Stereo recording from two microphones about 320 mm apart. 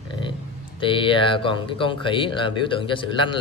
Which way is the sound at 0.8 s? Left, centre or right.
Centre.